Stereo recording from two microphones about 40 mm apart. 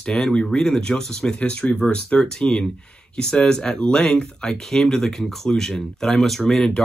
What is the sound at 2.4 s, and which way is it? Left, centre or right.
Speech, left.